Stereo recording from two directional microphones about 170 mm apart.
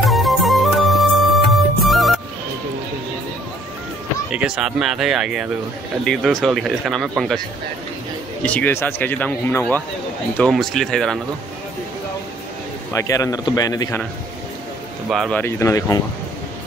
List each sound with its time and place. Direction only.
0.0 s music: centre (ahead or behind)
4.3 s speech: 5° right (ahead or behind)
12.9 s a man's voice: 20° left (ahead or behind)
15.0 s speech: centre (ahead or behind)
15.4 s speech: 20° left (ahead or behind)